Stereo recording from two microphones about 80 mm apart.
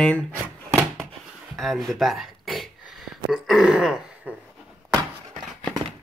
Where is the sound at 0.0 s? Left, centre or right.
Centre.